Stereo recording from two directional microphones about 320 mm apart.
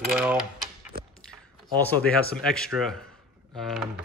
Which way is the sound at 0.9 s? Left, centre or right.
Right.